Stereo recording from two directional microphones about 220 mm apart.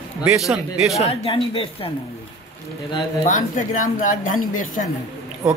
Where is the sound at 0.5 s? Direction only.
Centre (ahead or behind).